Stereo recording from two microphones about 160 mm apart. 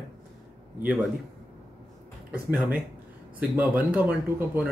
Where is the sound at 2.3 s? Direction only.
10° right (ahead or behind).